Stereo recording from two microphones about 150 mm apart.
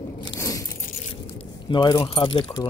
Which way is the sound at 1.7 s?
30° left (ahead or behind).